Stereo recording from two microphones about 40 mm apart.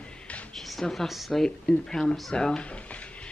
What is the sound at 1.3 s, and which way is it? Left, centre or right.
Speech, centre.